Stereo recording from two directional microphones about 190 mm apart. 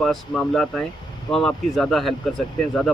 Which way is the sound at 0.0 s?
Centre (ahead or behind).